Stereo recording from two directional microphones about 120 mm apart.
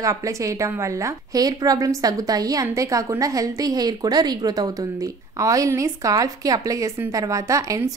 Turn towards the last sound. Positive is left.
turn(degrees=-25)  # may be behind; listen again after turning